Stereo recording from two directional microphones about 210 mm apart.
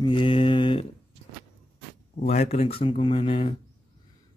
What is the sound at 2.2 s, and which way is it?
Speech, 30° left (ahead or behind).